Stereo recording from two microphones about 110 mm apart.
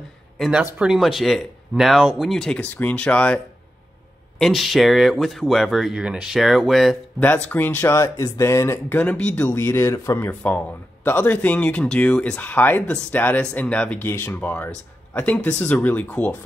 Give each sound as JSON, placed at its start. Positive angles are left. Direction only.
{"t": 0.4, "sound": "speech", "side_deg": -5}
{"t": 4.4, "sound": "speech", "side_deg": 0}
{"t": 7.4, "sound": "speech", "side_deg": 15}